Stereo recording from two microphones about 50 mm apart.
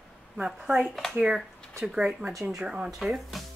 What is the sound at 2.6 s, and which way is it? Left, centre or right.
Speech, right.